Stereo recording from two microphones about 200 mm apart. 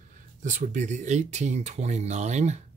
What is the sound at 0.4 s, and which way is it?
Speech, 40° right (ahead or behind).